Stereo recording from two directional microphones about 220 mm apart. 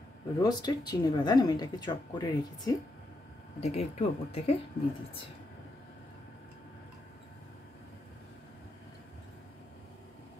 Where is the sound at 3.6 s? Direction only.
30° left (ahead or behind).